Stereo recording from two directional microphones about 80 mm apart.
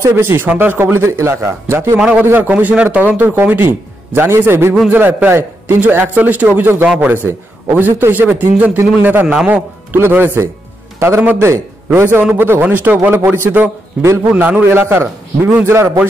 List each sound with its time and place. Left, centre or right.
0.0 s a man's voice: right
2.0 s a man's voice: centre; by 15.9 s right